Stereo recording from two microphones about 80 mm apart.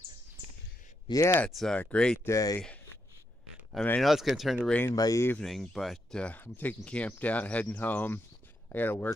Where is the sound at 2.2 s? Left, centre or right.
Left.